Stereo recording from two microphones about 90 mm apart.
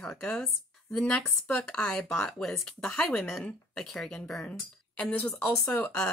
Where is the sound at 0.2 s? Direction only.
5° left (ahead or behind).